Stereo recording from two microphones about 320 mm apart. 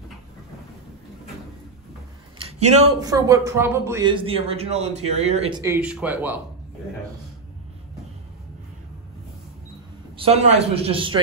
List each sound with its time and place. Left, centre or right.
2.7 s speech: centre
10.1 s speech: centre